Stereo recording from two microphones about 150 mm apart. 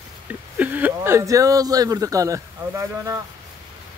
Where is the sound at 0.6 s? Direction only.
10° right (ahead or behind).